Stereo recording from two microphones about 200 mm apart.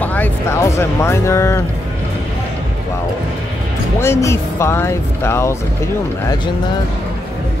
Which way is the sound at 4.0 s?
15° left (ahead or behind).